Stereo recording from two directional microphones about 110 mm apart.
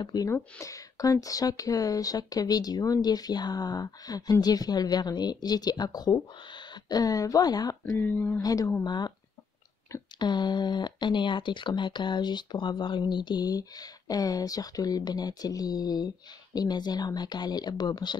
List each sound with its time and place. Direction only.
0.0 s speech: 35° left (ahead or behind)
8.0 s speech: 20° left (ahead or behind)
8.4 s speech: 35° left (ahead or behind)
10.1 s speech: 40° left (ahead or behind)